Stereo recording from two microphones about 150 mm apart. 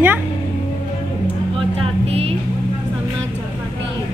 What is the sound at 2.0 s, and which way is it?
Vehicle, 40° right (ahead or behind).